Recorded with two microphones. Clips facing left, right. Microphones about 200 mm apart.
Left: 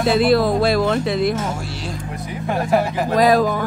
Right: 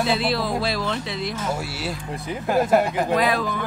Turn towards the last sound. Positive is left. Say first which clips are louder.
# left 7 dB
turn(degrees=40)  # may be behind; listen again after turning